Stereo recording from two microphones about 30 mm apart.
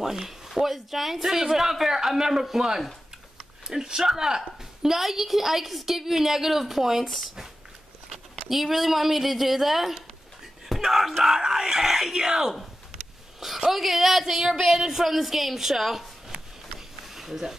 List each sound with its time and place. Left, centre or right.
0.0 s a man's voice: centre
8.5 s speech: centre
11.3 s a man's voice: centre
13.7 s speech: centre
14.2 s a man's voice: centre
15.0 s a man's voice: centre
17.0 s a sound: centre